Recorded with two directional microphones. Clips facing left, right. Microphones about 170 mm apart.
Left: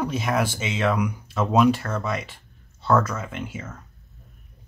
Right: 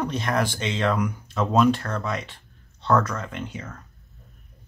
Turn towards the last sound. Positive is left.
turn(degrees=5)  # may be behind; listen again after turning